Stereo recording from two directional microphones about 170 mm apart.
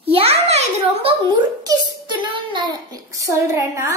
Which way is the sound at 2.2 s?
25° right (ahead or behind).